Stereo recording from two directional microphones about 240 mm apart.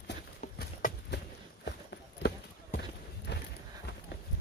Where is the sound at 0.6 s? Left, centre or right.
Left.